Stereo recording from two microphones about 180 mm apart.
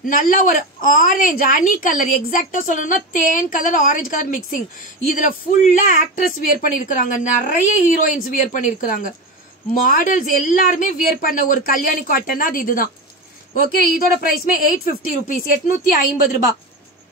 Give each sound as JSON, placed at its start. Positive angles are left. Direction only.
{"t": 0.0, "sound": "a woman's voice", "side_deg": 50}